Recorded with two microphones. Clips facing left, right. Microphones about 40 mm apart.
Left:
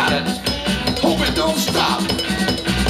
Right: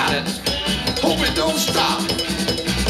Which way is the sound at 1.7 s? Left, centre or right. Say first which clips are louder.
Left 1 dB; left.